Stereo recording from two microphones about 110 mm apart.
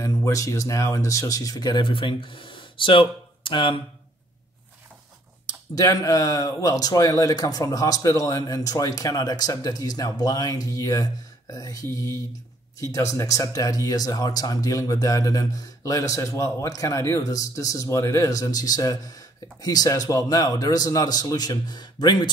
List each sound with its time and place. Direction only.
0.0 s speech: 30° left (ahead or behind); by 3.8 s 50° left (ahead or behind)
5.5 s speech: 30° left (ahead or behind)